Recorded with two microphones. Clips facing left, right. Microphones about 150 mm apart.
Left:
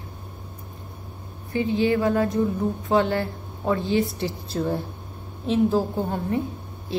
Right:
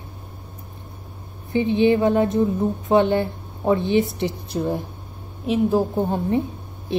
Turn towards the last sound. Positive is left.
turn(degrees=-20)  # may be behind; listen again after turning